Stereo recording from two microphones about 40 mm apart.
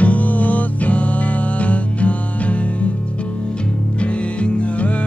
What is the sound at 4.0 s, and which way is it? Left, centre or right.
Music, left.